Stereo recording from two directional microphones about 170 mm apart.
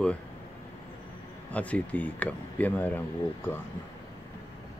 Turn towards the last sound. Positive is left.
turn(degrees=10)  # may be behind; listen again after turning